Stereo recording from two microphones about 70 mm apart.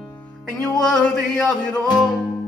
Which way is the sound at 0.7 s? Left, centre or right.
Centre.